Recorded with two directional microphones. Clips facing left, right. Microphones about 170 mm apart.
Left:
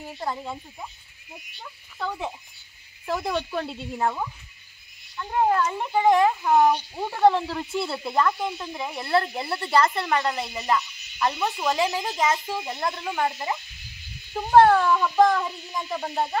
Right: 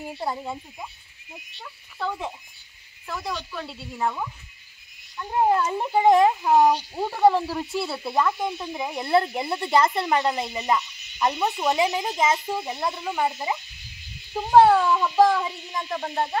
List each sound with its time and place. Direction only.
0.2 s speech: 10° right (ahead or behind)
3.1 s cricket: 40° left (ahead or behind)
5.1 s speech: 10° right (ahead or behind)
7.0 s speech: 5° right (ahead or behind)
15.8 s a sound: 5° left (ahead or behind)